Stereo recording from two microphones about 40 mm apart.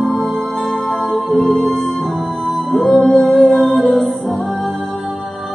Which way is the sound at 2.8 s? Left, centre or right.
Centre.